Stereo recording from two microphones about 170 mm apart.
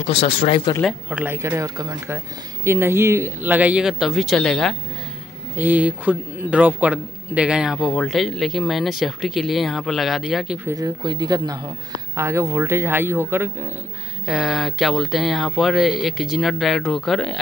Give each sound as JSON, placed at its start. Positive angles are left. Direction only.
{"t": 0.0, "sound": "speech", "side_deg": 35}
{"t": 1.1, "sound": "speech", "side_deg": -15}
{"t": 5.6, "sound": "a man's voice", "side_deg": -10}
{"t": 10.7, "sound": "speech", "side_deg": -25}
{"t": 14.2, "sound": "a man's voice", "side_deg": -5}